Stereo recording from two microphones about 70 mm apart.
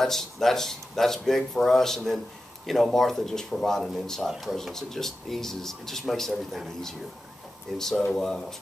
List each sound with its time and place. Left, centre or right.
0.0 s speech: centre